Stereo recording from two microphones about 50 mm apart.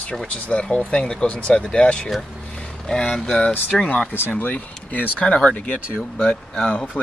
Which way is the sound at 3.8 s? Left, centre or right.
Left.